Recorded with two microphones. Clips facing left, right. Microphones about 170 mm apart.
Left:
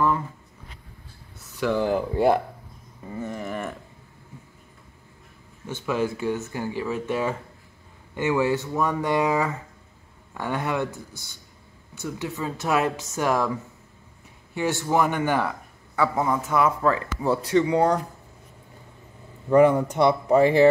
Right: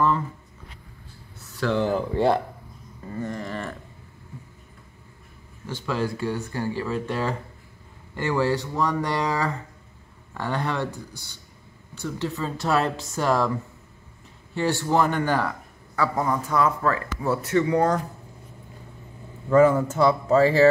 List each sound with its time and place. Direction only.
1.4 s speech: 15° left (ahead or behind)
3.1 s a sound: 10° left (ahead or behind)
5.9 s a man's voice: 15° left (ahead or behind)
8.7 s speech: 5° left (ahead or behind)
12.0 s speech: 20° left (ahead or behind)
16.2 s speech: 5° left (ahead or behind)
16.5 s speech: 15° left (ahead or behind)
19.5 s speech: 15° left (ahead or behind)